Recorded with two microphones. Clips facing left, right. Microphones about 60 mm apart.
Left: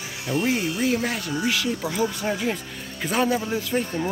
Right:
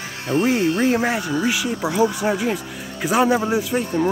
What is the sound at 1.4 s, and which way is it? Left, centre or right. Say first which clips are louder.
Speech: right 3 dB; centre.